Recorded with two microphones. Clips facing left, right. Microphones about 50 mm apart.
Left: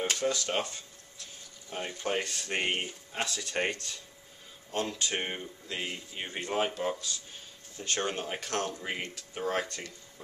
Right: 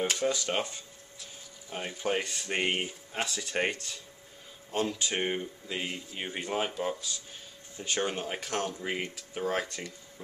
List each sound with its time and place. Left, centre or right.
0.0 s speech: centre